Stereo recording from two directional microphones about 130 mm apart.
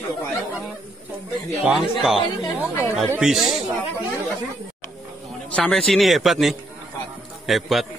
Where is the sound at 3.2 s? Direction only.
5° right (ahead or behind).